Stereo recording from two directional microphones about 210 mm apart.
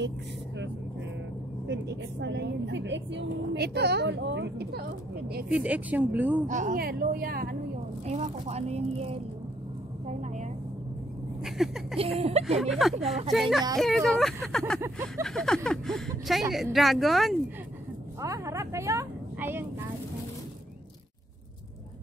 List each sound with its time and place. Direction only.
1.7 s a woman's voice: 55° right (ahead or behind)
5.5 s speech: 5° right (ahead or behind)
6.4 s a woman's voice: 35° right (ahead or behind)
8.1 s speech: 30° right (ahead or behind)
10.0 s speech: 30° right (ahead or behind)
11.4 s speech: centre (ahead or behind)
12.0 s speech: 30° right (ahead or behind)
12.5 s speech: centre (ahead or behind)
14.8 s speech: 15° right (ahead or behind)
15.2 s speech: 5° left (ahead or behind)
18.2 s a woman's voice: 15° right (ahead or behind)